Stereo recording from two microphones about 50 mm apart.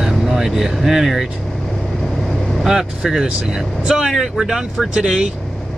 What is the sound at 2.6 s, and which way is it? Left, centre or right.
Speech, centre.